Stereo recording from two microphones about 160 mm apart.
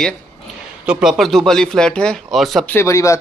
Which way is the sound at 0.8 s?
Centre (ahead or behind).